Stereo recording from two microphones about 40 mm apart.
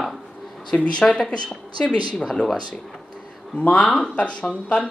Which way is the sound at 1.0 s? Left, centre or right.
Left.